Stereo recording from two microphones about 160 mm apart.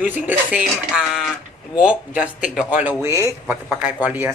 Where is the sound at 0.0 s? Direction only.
10° right (ahead or behind).